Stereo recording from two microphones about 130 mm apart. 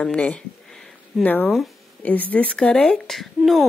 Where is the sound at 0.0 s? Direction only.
10° left (ahead or behind).